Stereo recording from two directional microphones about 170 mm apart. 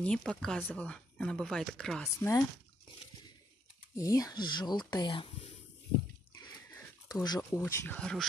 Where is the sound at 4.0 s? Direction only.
20° left (ahead or behind).